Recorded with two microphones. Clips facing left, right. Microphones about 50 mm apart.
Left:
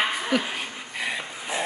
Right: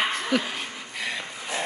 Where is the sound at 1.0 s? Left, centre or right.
Centre.